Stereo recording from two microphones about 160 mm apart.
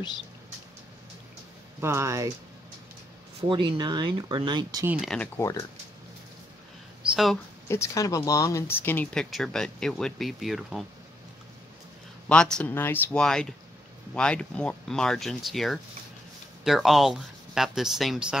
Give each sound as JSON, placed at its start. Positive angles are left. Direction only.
{"t": 1.8, "sound": "speech", "side_deg": -15}
{"t": 3.3, "sound": "speech", "side_deg": -30}
{"t": 5.0, "sound": "speech", "side_deg": 5}
{"t": 7.6, "sound": "speech", "side_deg": 15}
{"t": 12.3, "sound": "speech", "side_deg": 5}